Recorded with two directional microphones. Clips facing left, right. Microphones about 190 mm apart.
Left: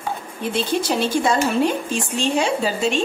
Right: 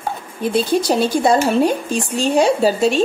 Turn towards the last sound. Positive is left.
turn(degrees=-40)  # may be behind; listen again after turning